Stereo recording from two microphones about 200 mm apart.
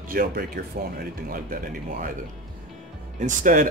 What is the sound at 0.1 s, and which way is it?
Speech, 50° right (ahead or behind).